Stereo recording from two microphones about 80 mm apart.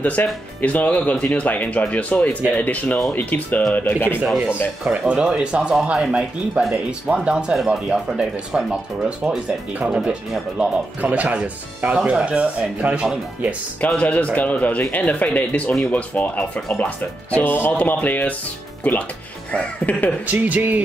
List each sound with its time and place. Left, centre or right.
0.0 s speech: centre
4.9 s speech: centre
9.8 s speech: centre
13.7 s speech: centre
20.2 s speech: centre